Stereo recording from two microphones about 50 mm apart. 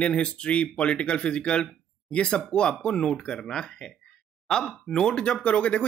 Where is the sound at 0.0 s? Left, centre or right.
Left.